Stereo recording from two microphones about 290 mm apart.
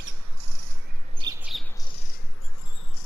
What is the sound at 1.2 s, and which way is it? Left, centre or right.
Bird, centre.